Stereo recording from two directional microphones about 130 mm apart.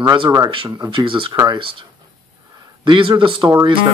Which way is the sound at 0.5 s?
40° right (ahead or behind).